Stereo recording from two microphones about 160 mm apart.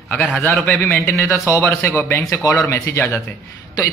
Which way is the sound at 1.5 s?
15° left (ahead or behind).